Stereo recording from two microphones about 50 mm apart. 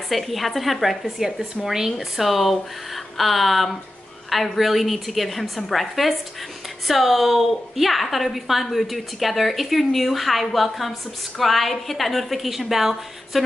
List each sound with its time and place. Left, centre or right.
0.1 s a woman's voice: centre